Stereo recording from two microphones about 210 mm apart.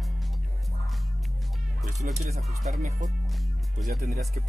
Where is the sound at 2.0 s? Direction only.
40° right (ahead or behind).